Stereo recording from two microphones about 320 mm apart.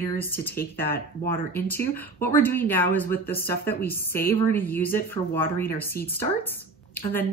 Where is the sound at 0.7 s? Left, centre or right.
Left.